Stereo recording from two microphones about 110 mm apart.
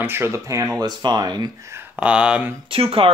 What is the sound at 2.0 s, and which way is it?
Speech, 10° right (ahead or behind).